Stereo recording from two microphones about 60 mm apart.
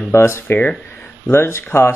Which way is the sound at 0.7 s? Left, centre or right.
Centre.